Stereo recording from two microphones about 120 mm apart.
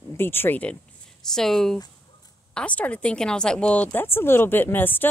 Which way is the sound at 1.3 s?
5° left (ahead or behind).